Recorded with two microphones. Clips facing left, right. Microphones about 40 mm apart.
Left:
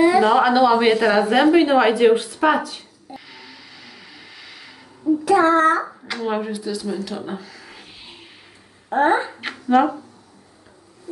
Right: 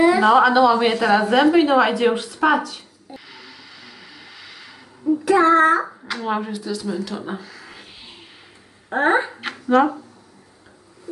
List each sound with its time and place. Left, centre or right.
0.0 s a sound: centre
0.4 s a woman's voice: centre
3.1 s a sound: centre
5.2 s child singing: centre
6.0 s speech: centre
8.9 s child singing: centre
9.3 s speech: centre